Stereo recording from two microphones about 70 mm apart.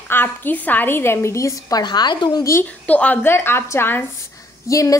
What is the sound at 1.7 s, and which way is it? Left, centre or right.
Speech, left.